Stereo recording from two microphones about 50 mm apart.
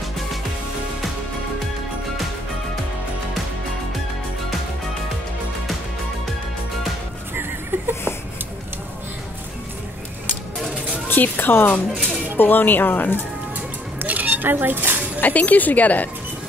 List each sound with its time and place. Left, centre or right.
11.1 s a woman's voice: left
11.9 s speech: centre
12.4 s speech: left
14.0 s dishes: right
15.1 s speech: left